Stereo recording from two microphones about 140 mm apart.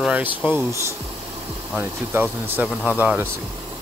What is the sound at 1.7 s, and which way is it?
Speech, 15° right (ahead or behind).